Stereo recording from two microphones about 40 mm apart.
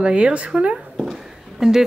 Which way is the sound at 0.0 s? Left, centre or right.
Right.